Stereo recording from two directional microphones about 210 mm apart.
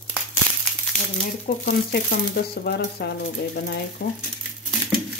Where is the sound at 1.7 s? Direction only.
50° left (ahead or behind).